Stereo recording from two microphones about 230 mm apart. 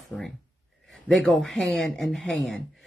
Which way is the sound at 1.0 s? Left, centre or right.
Centre.